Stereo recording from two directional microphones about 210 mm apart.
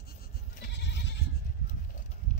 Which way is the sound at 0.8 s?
55° left (ahead or behind).